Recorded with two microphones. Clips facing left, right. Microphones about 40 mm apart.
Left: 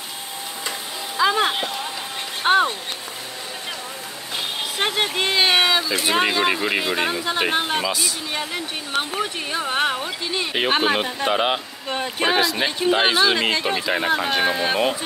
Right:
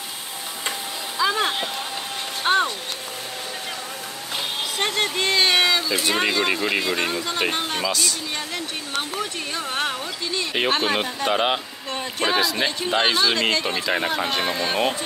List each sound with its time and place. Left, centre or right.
1.1 s vehicle: centre
2.4 s speech: centre
4.7 s speech: centre
11.9 s speech: centre